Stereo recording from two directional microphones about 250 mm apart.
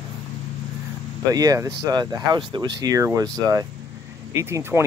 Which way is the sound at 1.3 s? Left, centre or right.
Centre.